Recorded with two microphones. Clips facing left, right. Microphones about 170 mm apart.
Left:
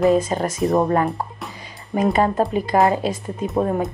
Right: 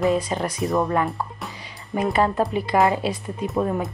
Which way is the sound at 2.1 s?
25° left (ahead or behind).